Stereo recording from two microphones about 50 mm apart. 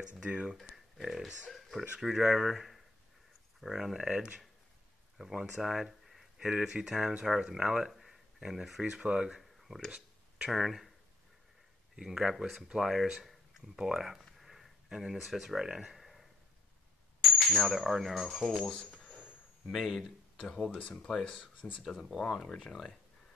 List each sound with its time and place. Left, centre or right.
0.1 s speech: centre
0.7 s speech: centre
5.3 s speech: centre
9.4 s a sound: centre
11.9 s speech: centre
13.2 s a sound: centre
13.7 s speech: centre
14.2 s a sound: centre
18.8 s a sound: centre
19.7 s speech: centre
20.8 s speech: centre
21.8 s speech: centre